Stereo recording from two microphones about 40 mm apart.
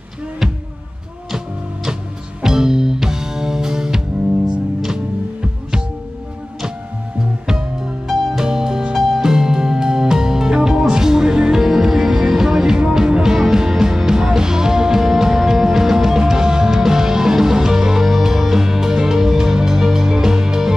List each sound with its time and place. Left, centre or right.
2.4 s music: centre
7.4 s music: centre
11.6 s music: centre